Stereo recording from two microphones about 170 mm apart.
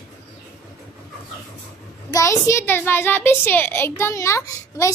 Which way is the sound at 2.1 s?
15° left (ahead or behind).